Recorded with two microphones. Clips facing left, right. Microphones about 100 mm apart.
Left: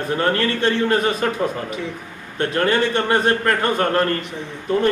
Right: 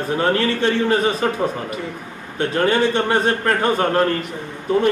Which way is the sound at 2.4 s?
15° right (ahead or behind).